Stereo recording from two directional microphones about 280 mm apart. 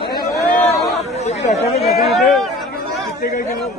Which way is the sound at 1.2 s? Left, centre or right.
Left.